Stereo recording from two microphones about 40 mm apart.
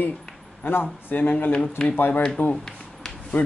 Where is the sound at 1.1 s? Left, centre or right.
Left.